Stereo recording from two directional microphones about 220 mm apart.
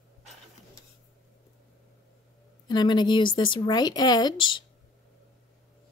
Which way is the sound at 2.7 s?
20° left (ahead or behind).